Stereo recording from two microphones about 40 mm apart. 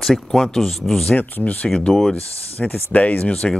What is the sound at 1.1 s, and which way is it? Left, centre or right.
Speech, left.